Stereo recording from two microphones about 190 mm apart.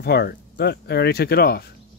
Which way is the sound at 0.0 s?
55° left (ahead or behind).